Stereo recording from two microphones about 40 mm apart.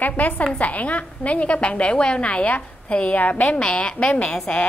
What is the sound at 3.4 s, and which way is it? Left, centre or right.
A woman's voice, left.